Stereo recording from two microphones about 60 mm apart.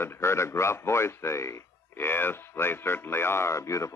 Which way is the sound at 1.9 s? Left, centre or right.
Left.